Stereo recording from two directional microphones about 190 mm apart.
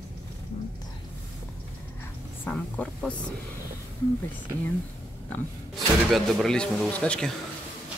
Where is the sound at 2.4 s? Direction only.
5° left (ahead or behind).